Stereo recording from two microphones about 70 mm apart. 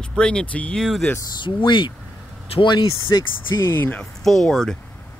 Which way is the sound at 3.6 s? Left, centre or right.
Left.